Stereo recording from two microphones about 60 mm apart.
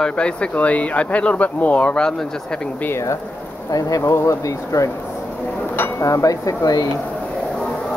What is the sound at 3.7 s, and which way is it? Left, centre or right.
Speech, left.